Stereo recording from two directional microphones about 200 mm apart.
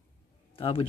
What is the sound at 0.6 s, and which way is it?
Speech, 25° left (ahead or behind).